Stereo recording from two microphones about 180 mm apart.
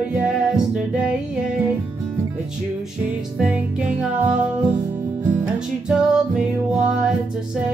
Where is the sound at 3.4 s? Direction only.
5° right (ahead or behind).